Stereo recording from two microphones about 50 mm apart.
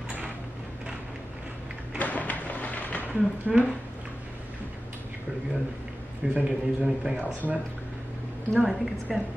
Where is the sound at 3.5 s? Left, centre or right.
Centre.